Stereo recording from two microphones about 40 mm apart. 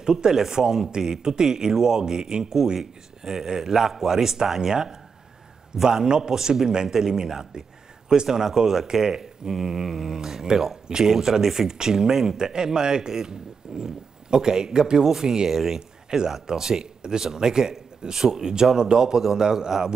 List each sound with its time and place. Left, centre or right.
0.0 s a man's voice: centre